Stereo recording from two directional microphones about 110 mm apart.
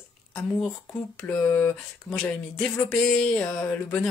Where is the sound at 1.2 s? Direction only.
15° left (ahead or behind).